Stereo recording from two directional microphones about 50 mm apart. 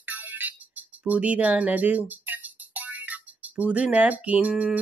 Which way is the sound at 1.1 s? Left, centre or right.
Right.